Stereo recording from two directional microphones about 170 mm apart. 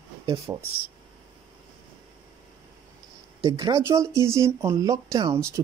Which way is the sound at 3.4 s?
25° right (ahead or behind).